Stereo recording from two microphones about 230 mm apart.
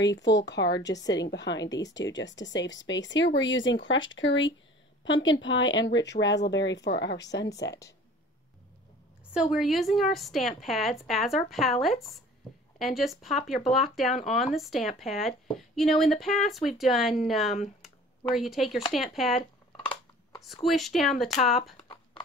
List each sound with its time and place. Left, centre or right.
0.0 s speech: left
0.9 s a woman's voice: centre
1.2 s speech: left
1.7 s a woman's voice: centre
2.0 s a woman's voice: left
9.3 s speech: centre
17.8 s a sound: centre
18.9 s speech: centre
20.6 s speech: centre
21.7 s a sound: left